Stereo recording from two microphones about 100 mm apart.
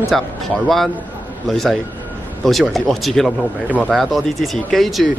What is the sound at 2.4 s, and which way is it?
Speech, centre (ahead or behind).